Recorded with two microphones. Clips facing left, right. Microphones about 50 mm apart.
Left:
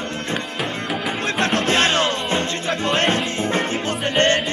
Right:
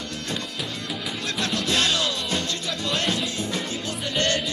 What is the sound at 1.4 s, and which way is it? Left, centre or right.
Music, left.